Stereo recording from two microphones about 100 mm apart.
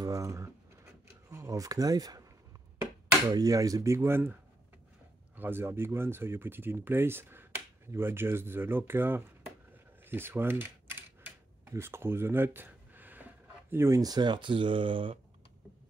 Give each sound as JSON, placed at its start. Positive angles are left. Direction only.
{"t": 0.0, "sound": "speech", "side_deg": -35}
{"t": 3.3, "sound": "speech", "side_deg": -40}